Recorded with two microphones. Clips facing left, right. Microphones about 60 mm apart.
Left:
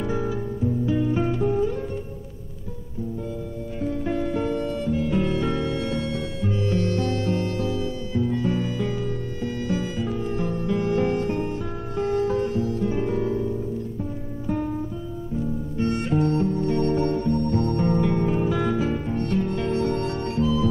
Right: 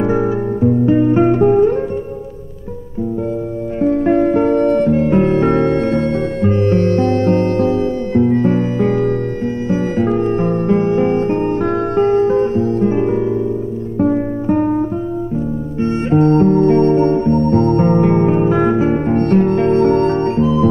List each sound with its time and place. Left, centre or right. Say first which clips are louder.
0.0 s music: right 11 dB; right
3.8 s music: right 13 dB; right
10.9 s music: right 8 dB; right
11.6 s music: right 13 dB; right
14.5 s guitar: right 11 dB; right
15.8 s music: right 9 dB; right
16.8 s music: right 10 dB; right
19.0 s music: right 12 dB; right